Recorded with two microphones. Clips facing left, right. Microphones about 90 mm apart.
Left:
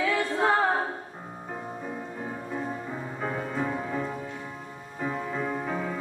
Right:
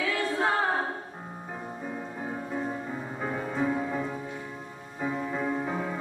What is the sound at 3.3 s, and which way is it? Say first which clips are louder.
Music: right 1 dB; 5° right (ahead or behind).